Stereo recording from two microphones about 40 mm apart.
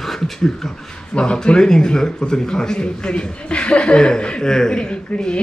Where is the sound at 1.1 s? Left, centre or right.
Left.